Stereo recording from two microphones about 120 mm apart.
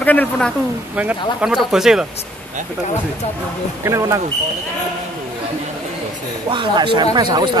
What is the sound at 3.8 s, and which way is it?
Speech, 25° right (ahead or behind).